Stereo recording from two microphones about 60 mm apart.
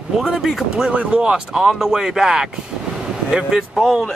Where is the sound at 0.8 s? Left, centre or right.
Centre.